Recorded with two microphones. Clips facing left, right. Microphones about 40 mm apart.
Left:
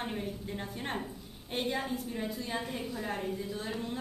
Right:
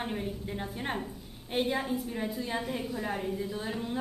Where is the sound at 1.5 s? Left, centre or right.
Centre.